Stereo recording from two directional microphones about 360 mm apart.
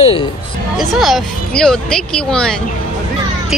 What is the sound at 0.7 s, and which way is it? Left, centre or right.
Speech, centre.